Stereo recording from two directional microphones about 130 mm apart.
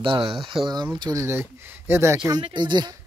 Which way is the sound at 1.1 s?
20° right (ahead or behind).